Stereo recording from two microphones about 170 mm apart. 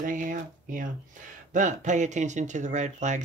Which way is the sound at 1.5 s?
45° right (ahead or behind).